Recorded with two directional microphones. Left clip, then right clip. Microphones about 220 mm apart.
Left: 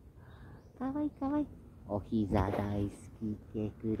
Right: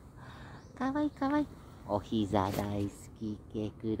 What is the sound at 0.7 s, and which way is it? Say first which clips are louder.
Speech: right 4 dB; 20° right (ahead or behind).